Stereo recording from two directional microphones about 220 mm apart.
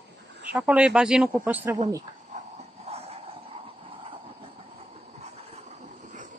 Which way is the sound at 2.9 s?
25° right (ahead or behind).